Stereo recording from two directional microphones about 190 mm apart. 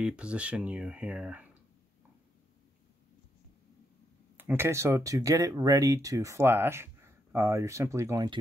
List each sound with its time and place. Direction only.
0.0 s speech: 5° right (ahead or behind)
4.4 s speech: 10° right (ahead or behind)